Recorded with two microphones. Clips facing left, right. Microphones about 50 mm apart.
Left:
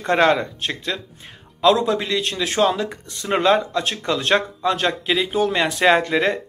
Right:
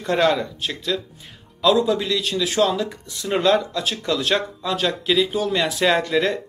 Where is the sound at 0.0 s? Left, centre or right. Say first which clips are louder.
Left 2 dB; left.